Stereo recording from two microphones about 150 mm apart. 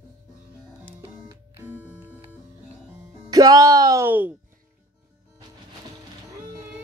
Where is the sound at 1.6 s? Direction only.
10° right (ahead or behind).